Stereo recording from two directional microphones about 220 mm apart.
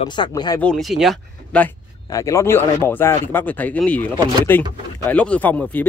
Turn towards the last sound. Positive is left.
turn(degrees=5)  # may be behind; listen again after turning